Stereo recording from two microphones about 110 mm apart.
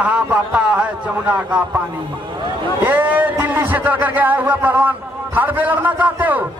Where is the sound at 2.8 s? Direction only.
15° right (ahead or behind).